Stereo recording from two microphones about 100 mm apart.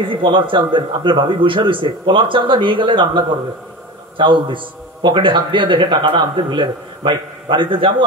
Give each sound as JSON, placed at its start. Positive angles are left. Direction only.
{"t": 0.1, "sound": "a man's voice", "side_deg": -55}